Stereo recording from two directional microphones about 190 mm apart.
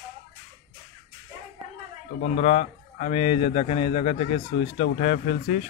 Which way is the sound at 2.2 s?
35° left (ahead or behind).